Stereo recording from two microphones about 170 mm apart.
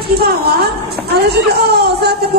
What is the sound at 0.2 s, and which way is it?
A woman's voice, 70° right (ahead or behind).